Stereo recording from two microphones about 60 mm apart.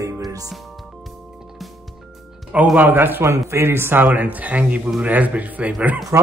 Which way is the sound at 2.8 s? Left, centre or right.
Right.